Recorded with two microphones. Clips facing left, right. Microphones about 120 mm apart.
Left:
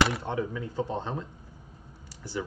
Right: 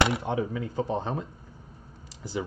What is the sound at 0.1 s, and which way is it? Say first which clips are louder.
Speech: right 3 dB; 15° right (ahead or behind).